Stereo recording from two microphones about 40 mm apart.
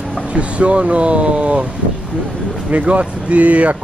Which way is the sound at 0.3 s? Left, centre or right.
Right.